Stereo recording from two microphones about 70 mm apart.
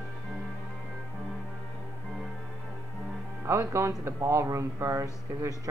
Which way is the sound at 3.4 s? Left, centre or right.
Right.